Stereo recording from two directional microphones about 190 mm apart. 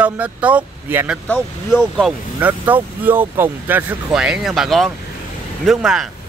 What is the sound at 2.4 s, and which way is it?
Speech, 10° right (ahead or behind).